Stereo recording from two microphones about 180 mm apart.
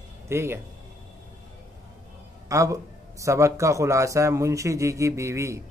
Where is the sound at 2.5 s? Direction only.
15° right (ahead or behind).